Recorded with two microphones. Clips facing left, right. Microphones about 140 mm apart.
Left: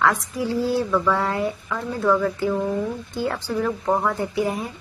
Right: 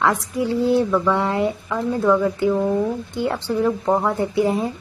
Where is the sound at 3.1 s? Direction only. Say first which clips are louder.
Right 2 dB; 25° right (ahead or behind).